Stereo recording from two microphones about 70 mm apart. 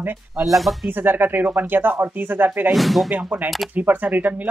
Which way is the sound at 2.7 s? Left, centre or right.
Centre.